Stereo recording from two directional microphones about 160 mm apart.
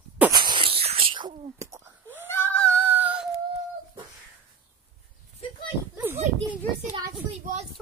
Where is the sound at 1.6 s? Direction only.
20° right (ahead or behind).